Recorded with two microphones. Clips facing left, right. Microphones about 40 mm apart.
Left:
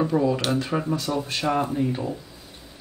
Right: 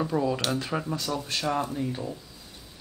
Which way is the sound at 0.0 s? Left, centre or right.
Centre.